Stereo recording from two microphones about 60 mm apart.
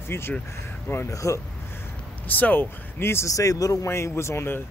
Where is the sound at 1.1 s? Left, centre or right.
Left.